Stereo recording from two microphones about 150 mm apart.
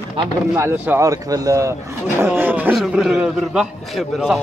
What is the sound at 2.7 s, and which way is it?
Speech, centre (ahead or behind).